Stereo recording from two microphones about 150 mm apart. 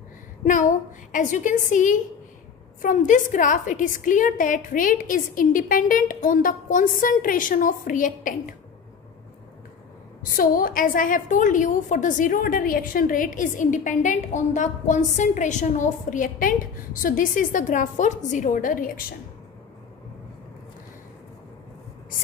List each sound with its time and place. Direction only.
1.1 s a woman's voice: 60° left (ahead or behind)
10.3 s a woman's voice: 70° left (ahead or behind)